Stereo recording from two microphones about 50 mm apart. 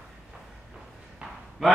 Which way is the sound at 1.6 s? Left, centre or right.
Centre.